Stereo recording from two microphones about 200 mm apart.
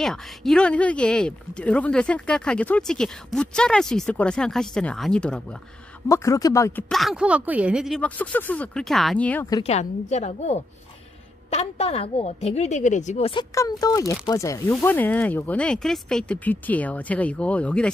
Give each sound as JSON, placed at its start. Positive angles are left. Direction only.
{"t": 0.0, "sound": "speech", "side_deg": 0}
{"t": 6.0, "sound": "speech", "side_deg": 15}
{"t": 6.9, "sound": "speech", "side_deg": 0}
{"t": 9.6, "sound": "a woman's voice", "side_deg": 35}